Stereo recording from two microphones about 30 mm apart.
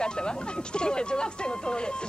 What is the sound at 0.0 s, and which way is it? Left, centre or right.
Speech, left.